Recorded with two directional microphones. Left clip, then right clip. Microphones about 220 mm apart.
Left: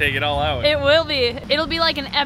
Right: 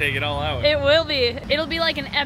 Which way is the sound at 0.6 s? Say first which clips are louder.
Even; 10° left (ahead or behind).